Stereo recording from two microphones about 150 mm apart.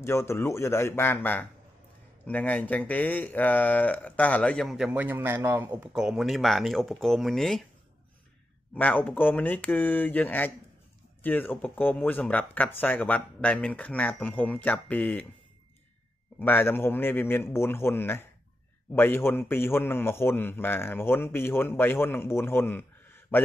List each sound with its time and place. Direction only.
0.0 s a man's voice: 20° left (ahead or behind); by 7.6 s centre (ahead or behind)
8.7 s a man's voice: 10° left (ahead or behind)
16.3 s a man's voice: 15° left (ahead or behind)